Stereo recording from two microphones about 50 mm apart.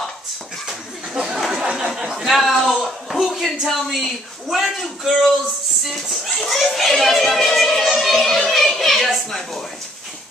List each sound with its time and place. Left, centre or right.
1.2 s a sound: centre
2.0 s speech: centre
2.2 s a child's voice: centre
5.9 s a child's voice: centre